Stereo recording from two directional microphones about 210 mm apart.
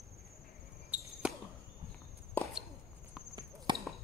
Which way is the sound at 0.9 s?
5° right (ahead or behind).